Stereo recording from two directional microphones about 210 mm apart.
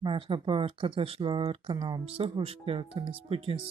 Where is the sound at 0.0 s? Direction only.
25° right (ahead or behind).